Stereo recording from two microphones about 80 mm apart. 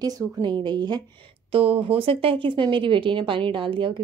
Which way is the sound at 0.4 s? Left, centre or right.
Right.